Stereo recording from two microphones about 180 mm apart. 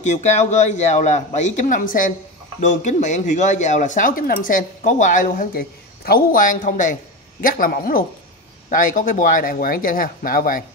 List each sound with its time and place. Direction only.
0.0 s a man's voice: 40° left (ahead or behind)